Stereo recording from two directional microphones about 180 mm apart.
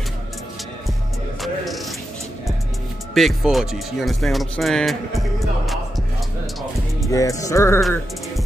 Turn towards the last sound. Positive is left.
turn(degrees=15)  # may be behind; listen again after turning